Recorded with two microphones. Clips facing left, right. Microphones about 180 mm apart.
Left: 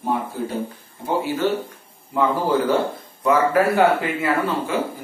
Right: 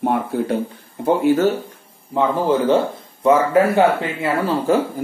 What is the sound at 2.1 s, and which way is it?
Speech, 25° right (ahead or behind).